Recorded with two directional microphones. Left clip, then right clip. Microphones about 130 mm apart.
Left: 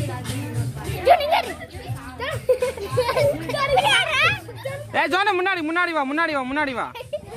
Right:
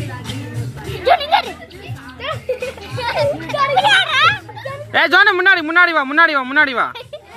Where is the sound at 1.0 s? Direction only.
15° left (ahead or behind).